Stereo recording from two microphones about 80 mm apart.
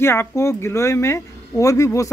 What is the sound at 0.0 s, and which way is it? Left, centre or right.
Speech, left.